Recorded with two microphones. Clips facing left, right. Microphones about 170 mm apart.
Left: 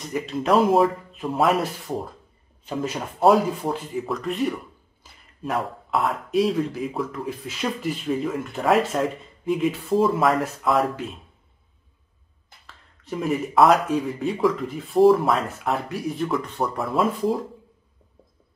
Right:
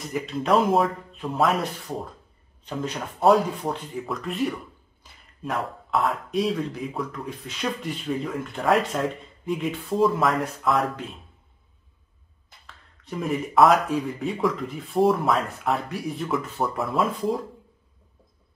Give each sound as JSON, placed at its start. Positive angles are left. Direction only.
{"t": 0.1, "sound": "speech", "side_deg": 0}
{"t": 13.0, "sound": "speech", "side_deg": 0}